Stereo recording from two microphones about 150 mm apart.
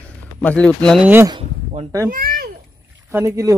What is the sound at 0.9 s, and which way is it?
Speech, 10° right (ahead or behind).